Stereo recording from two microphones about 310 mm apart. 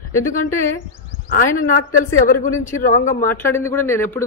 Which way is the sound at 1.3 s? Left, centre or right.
Left.